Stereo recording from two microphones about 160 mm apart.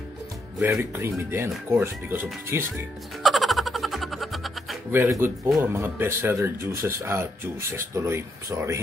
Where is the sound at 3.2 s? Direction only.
Centre (ahead or behind).